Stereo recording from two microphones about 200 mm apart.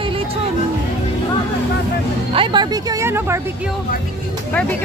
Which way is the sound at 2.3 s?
25° right (ahead or behind).